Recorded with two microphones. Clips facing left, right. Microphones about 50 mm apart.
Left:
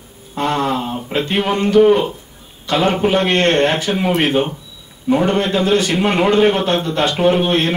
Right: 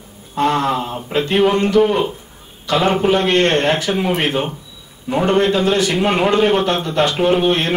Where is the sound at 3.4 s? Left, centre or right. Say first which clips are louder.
Left 1 dB; left.